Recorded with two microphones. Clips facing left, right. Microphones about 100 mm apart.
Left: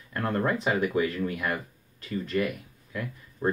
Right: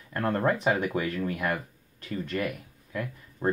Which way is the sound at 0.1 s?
25° right (ahead or behind).